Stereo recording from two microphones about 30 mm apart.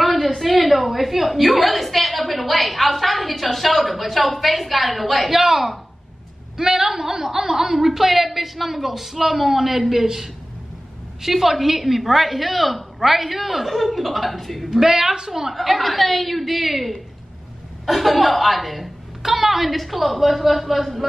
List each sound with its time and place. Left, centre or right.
0.0 s a sound: centre
0.3 s a woman's voice: centre
14.7 s a woman's voice: centre
15.5 s a woman's voice: centre